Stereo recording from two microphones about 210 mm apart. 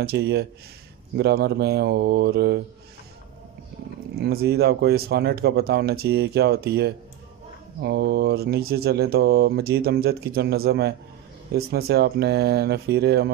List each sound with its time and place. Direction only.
0.0 s speech: 50° right (ahead or behind)
4.1 s speech: 50° right (ahead or behind)